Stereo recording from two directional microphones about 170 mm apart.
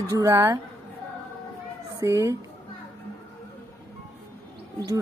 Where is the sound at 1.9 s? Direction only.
15° right (ahead or behind).